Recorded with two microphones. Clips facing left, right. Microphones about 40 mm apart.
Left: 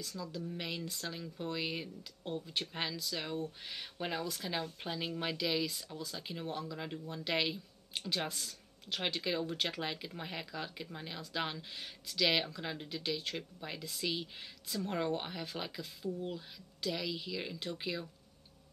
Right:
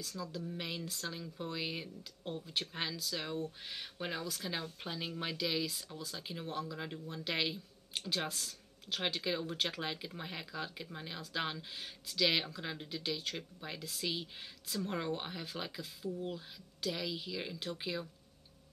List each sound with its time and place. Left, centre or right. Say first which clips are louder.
0.3 s speech: left 1 dB; centre
13.2 s speech: left 1 dB; centre
13.6 s speech: left 1 dB; centre